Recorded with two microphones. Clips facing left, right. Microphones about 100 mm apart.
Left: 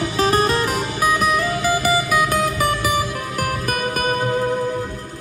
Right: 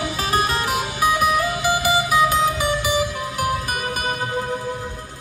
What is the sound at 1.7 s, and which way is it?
Music, 45° left (ahead or behind).